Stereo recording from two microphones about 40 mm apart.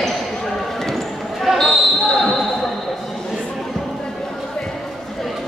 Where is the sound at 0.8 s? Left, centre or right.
Centre.